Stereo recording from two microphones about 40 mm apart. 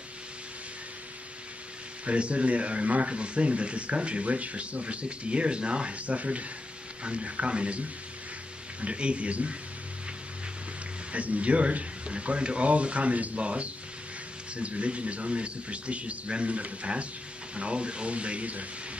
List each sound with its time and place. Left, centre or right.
2.0 s speech: right
8.8 s speech: right
11.1 s speech: right